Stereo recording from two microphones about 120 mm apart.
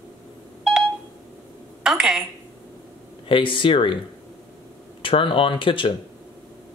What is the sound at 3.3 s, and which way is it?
Speech, 45° left (ahead or behind).